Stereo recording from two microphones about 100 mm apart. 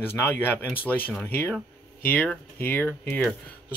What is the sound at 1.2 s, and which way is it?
Speech, 20° left (ahead or behind).